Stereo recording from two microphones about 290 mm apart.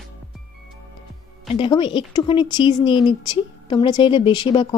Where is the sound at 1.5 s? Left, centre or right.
Centre.